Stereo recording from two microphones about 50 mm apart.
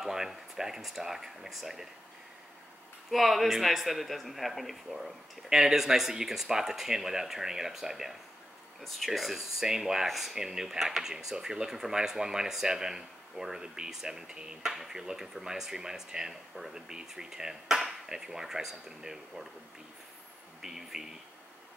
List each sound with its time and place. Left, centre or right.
0.0 s a sound: centre
3.1 s speech: centre
20.6 s speech: centre